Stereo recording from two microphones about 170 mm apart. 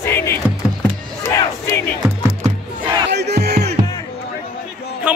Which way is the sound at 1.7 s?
15° left (ahead or behind).